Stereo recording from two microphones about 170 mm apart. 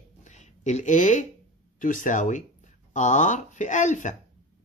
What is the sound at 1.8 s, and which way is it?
Speech, 50° left (ahead or behind).